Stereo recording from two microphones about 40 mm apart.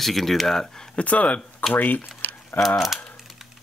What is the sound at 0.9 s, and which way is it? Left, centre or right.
Speech, left.